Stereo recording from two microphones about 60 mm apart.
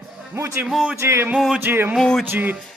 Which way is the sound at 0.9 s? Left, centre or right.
Right.